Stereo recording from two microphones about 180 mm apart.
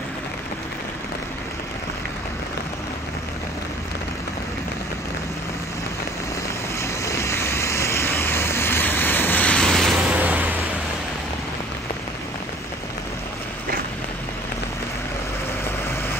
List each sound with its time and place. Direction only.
6.8 s vehicle: 15° left (ahead or behind); by 10.5 s 10° right (ahead or behind)